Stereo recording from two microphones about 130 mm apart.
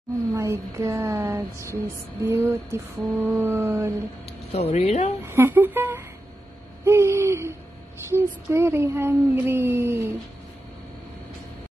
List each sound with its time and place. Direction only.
0.4 s speech: 25° right (ahead or behind)
4.5 s speech: 55° left (ahead or behind)
5.2 s a sound: 20° right (ahead or behind)
6.8 s speech: 20° right (ahead or behind)